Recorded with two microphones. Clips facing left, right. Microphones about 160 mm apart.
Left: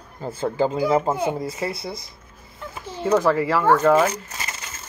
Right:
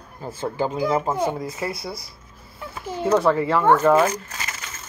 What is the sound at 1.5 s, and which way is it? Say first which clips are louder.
Speech: left 1 dB; 25° left (ahead or behind).